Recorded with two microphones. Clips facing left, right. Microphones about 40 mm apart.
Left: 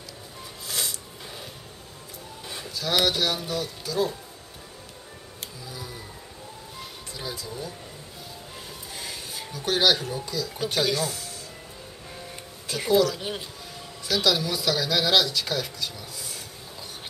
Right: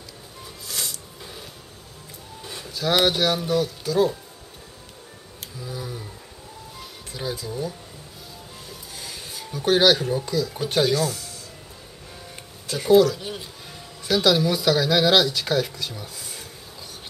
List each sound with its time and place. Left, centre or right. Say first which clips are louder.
0.7 s snort: left 1 dB; centre
2.4 s a sound: even; centre
2.7 s speech: right 4 dB; centre
5.7 s a sound: right 7 dB; centre
7.2 s speech: right 6 dB; centre
8.6 s music: left 1 dB; centre
9.5 s speech: right 5 dB; centre
10.9 s speech: right 4 dB; centre
12.6 s speech: right 4 dB; centre
12.9 s speech: right 6 dB; centre